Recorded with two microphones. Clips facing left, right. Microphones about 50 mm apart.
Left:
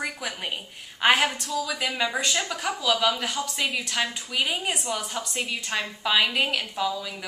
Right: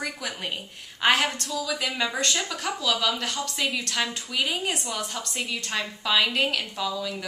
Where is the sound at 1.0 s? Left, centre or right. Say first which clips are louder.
Left 1 dB; centre.